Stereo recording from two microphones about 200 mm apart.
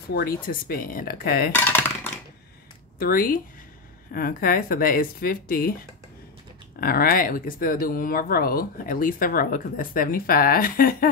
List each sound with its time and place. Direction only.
0.1 s speech: 45° left (ahead or behind)
1.5 s a sound: 10° left (ahead or behind)
3.0 s speech: 45° left (ahead or behind)
6.8 s speech: 50° left (ahead or behind)